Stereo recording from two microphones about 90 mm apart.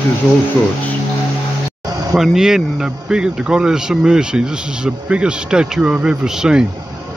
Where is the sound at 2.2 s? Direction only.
5° right (ahead or behind).